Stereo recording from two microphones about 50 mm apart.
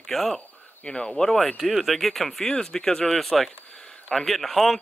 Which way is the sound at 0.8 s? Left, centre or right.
Centre.